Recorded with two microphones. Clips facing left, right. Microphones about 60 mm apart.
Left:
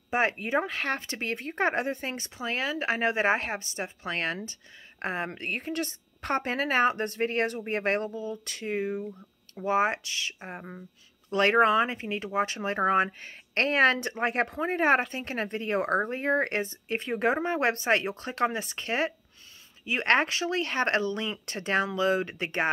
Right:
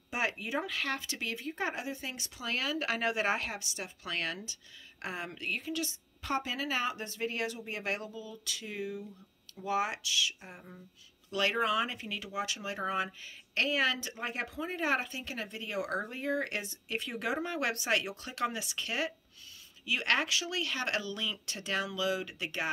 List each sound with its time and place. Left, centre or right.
0.1 s speech: left